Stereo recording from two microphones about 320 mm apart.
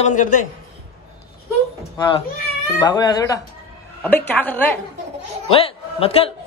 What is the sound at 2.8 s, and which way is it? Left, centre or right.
Speech, centre.